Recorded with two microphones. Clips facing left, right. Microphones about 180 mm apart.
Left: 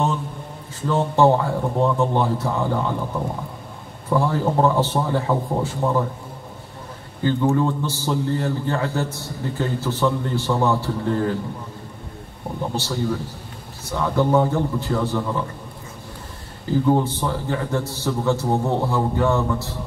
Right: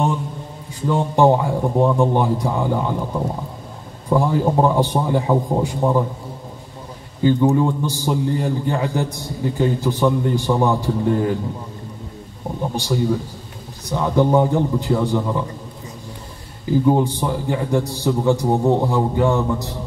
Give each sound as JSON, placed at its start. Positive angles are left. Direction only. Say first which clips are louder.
{"t": 0.7, "sound": "a man's voice", "louder": "right 1 dB", "side_deg": -15}
{"t": 7.2, "sound": "a man's voice", "louder": "right 4 dB", "side_deg": -15}
{"t": 12.7, "sound": "a man's voice", "louder": "right 5 dB", "side_deg": -15}
{"t": 16.8, "sound": "a man's voice", "louder": "right 2 dB", "side_deg": -15}